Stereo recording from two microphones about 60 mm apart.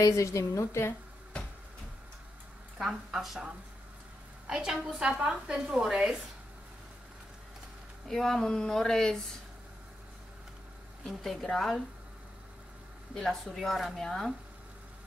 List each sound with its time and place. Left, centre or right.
0.0 s a woman's voice: left
2.8 s a woman's voice: centre
4.5 s a woman's voice: centre
8.1 s speech: centre
11.1 s a woman's voice: centre
13.1 s speech: centre